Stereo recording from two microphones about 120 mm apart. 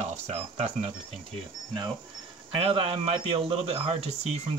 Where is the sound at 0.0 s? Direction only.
65° right (ahead or behind).